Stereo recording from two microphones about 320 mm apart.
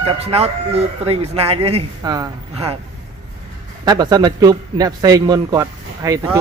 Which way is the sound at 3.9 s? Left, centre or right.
Centre.